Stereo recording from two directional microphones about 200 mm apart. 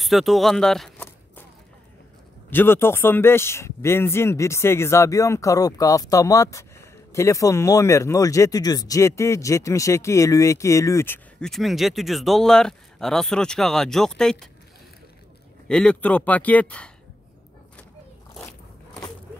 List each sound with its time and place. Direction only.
0.0 s speech: centre (ahead or behind)
2.5 s a man's voice: 10° left (ahead or behind)
15.7 s a man's voice: 5° left (ahead or behind)